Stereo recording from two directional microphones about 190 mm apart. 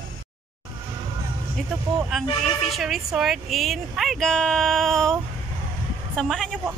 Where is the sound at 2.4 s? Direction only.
Centre (ahead or behind).